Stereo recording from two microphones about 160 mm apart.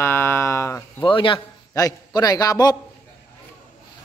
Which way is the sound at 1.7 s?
20° left (ahead or behind).